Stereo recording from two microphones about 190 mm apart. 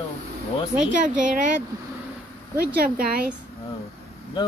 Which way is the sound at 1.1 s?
45° right (ahead or behind).